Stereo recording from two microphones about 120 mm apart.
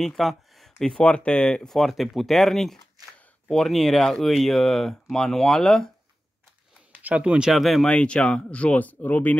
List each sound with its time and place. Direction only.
0.0 s speech: centre (ahead or behind)
7.0 s speech: 10° right (ahead or behind); by 9.4 s 15° left (ahead or behind)